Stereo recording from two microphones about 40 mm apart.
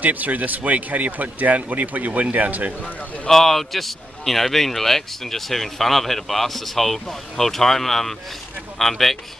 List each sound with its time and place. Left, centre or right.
0.0 s speech: right
3.3 s a man's voice: centre